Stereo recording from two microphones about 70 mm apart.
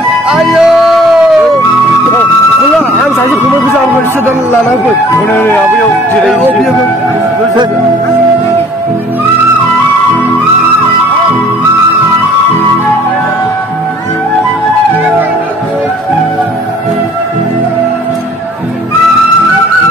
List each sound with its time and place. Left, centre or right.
0.3 s music: centre
5.1 s speech: left